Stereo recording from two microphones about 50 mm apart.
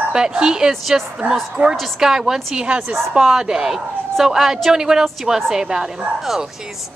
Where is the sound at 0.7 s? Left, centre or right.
Centre.